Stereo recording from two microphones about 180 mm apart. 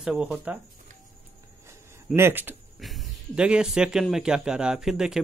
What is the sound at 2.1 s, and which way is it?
Speech, 10° right (ahead or behind).